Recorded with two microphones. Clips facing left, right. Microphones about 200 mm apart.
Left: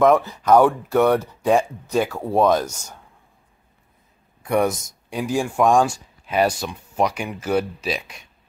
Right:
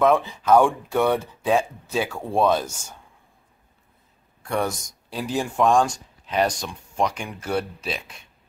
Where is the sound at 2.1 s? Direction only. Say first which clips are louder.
Left 2 dB; 10° left (ahead or behind).